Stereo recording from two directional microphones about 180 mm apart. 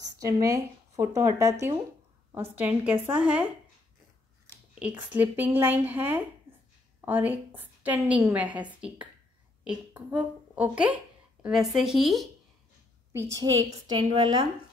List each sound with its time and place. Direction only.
0.2 s a woman's voice: 20° right (ahead or behind)
4.7 s a woman's voice: 5° right (ahead or behind)
13.4 s a woman's voice: 20° right (ahead or behind)